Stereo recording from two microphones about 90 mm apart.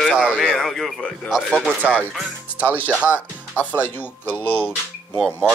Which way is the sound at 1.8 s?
20° right (ahead or behind).